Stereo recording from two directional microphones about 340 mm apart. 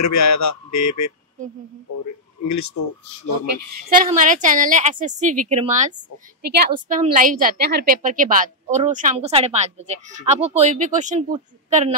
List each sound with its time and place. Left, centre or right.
0.0 s a man's voice: left
2.4 s speech: left
4.0 s a woman's voice: right